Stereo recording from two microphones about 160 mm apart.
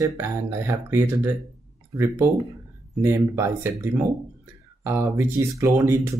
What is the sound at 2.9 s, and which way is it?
Speech, 15° right (ahead or behind).